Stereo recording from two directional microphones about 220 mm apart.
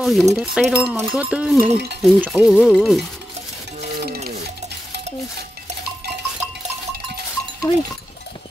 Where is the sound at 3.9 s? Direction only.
45° right (ahead or behind).